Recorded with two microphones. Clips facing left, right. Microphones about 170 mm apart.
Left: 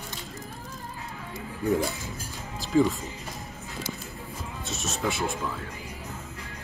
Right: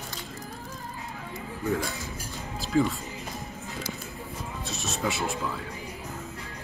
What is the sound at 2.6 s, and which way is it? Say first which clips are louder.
Music: left 2 dB; centre (ahead or behind).